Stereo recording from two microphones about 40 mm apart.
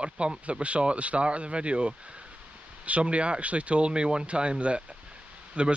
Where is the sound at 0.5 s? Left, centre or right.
Right.